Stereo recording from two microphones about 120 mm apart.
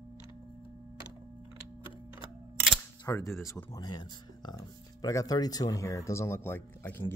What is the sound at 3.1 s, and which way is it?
Speech, 25° left (ahead or behind).